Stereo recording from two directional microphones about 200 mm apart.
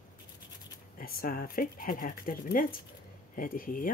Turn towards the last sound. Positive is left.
turn(degrees=45)  # may be behind; listen again after turning